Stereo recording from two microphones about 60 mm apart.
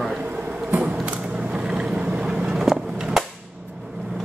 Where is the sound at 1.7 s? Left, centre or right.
Centre.